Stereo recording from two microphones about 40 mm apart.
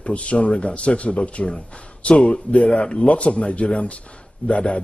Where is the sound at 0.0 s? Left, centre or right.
Left.